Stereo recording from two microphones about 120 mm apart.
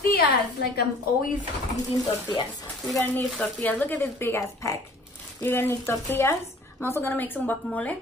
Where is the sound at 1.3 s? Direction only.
90° left.